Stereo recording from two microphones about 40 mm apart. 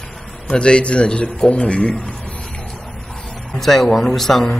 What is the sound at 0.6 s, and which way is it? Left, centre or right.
A man's voice, left.